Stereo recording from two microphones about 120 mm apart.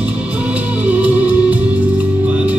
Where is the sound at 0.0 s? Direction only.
10° right (ahead or behind).